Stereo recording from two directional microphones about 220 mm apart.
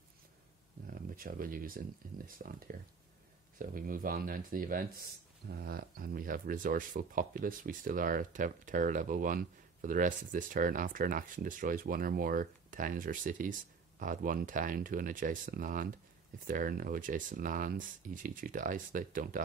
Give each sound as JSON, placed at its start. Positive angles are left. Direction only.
{"t": 0.8, "sound": "speech", "side_deg": -40}